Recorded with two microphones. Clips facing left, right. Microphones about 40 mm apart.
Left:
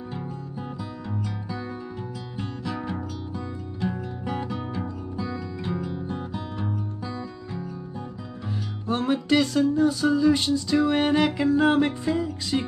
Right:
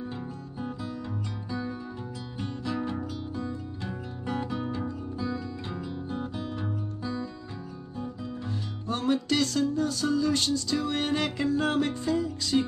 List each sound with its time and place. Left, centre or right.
1.5 s music: centre
8.8 s music: centre